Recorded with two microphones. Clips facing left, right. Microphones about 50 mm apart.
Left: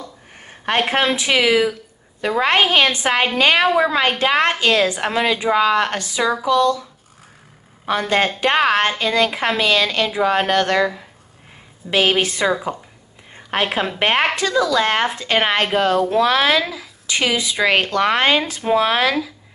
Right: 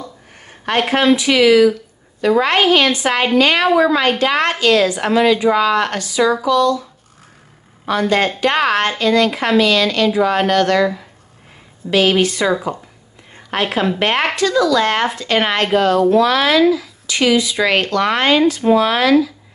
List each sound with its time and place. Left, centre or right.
0.5 s a woman's voice: centre
7.8 s a woman's voice: centre
11.9 s a woman's voice: left